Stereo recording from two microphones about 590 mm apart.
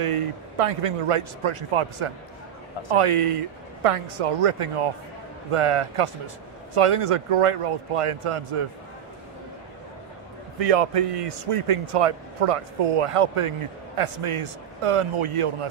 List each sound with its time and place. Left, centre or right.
0.0 s speech: right
10.6 s speech: right